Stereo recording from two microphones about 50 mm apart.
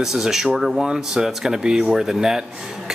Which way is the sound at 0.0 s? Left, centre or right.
Centre.